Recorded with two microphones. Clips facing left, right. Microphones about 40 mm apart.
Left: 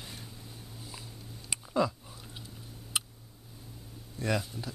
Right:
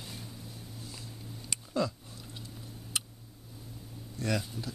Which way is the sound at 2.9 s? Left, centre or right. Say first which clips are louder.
Left 2 dB; centre.